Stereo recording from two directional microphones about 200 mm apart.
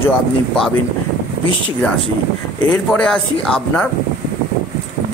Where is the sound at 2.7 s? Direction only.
5° left (ahead or behind).